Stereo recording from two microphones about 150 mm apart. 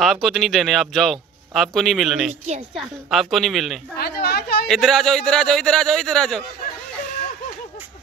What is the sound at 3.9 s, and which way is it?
Speech, 90° left.